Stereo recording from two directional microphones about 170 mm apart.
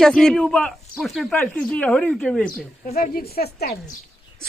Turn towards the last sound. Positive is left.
turn(degrees=65)  # may be behind; listen again after turning